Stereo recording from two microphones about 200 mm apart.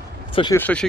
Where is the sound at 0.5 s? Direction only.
10° left (ahead or behind).